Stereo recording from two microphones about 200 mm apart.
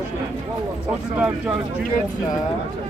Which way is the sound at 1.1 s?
5° right (ahead or behind).